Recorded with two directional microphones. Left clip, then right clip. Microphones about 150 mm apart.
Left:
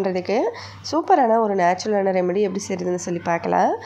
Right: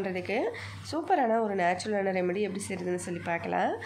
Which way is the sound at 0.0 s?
35° left (ahead or behind).